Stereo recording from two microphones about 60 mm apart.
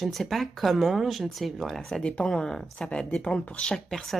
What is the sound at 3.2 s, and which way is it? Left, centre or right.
Speech, centre.